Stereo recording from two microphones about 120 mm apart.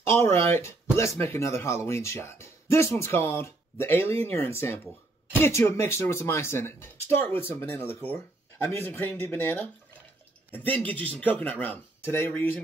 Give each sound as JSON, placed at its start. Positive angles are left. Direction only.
{"t": 0.0, "sound": "speech", "side_deg": 20}